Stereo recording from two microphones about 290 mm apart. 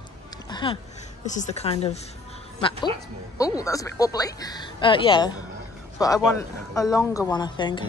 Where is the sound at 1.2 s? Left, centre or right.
Left.